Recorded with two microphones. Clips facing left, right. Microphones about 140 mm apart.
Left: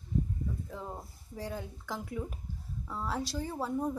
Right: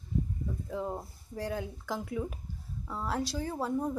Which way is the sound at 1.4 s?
Centre (ahead or behind).